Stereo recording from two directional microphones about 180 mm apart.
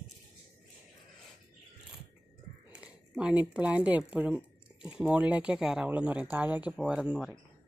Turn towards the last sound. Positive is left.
turn(degrees=0)  # may be behind; listen again after turning